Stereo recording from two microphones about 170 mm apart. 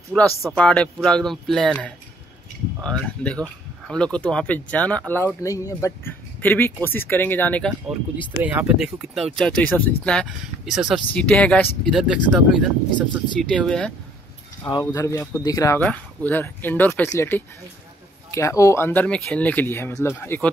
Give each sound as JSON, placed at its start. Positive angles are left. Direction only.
{"t": 0.4, "sound": "speech", "side_deg": 0}
{"t": 8.5, "sound": "speech", "side_deg": -5}
{"t": 14.7, "sound": "speech", "side_deg": 20}
{"t": 15.8, "sound": "speech", "side_deg": 10}